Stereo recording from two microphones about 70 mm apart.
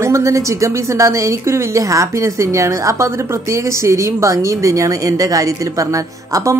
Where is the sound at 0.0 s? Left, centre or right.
Right.